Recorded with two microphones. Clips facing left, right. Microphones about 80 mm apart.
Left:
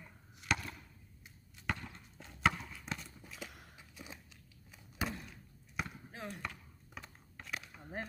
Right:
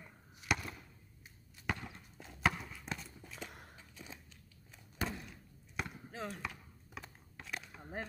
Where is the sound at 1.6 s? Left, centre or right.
Centre.